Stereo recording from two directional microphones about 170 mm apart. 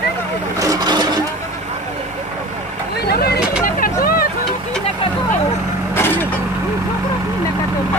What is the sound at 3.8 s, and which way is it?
Vehicle, 60° left (ahead or behind).